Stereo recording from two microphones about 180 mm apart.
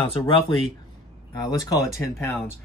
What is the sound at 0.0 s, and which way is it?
Speech, 30° left (ahead or behind).